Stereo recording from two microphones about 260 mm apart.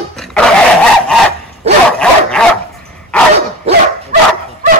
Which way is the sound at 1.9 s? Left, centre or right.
Centre.